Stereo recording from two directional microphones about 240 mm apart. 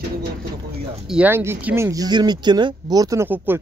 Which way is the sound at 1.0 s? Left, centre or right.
Centre.